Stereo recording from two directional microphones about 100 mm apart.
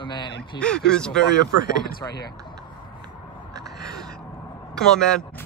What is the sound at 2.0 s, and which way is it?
Speech, 45° left (ahead or behind).